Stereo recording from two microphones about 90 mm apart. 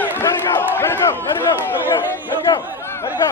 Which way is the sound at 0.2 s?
25° left (ahead or behind).